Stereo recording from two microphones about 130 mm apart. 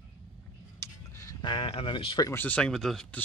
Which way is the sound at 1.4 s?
40° left (ahead or behind).